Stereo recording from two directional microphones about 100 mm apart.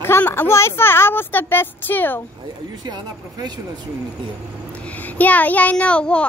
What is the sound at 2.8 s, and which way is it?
Speech, 45° right (ahead or behind).